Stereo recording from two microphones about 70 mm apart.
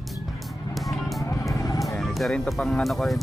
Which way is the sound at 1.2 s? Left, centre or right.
Left.